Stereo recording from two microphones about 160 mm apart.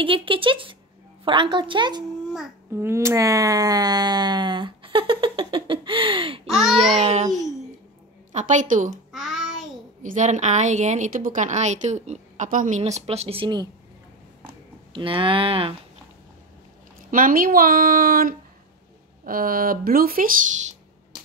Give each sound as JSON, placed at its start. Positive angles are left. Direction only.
{"t": 0.0, "sound": "a woman's voice", "side_deg": -35}
{"t": 2.7, "sound": "speech", "side_deg": -15}
{"t": 6.5, "sound": "speech", "side_deg": 0}
{"t": 7.0, "sound": "a woman's voice", "side_deg": -45}
{"t": 8.9, "sound": "a child's voice", "side_deg": 0}
{"t": 10.0, "sound": "a woman's voice", "side_deg": -50}
{"t": 14.9, "sound": "speech", "side_deg": -30}
{"t": 17.1, "sound": "speech", "side_deg": -60}